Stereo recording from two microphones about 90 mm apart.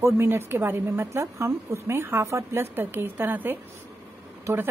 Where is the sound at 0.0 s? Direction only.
25° right (ahead or behind).